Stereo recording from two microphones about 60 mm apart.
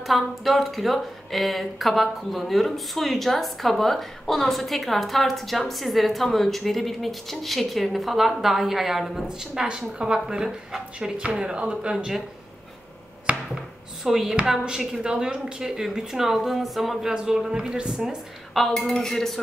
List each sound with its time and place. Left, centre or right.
0.0 s speech: centre
13.3 s chopping: right
14.0 s speech: centre
14.3 s a woman's voice: centre
17.1 s a woman's voice: centre
18.5 s speech: centre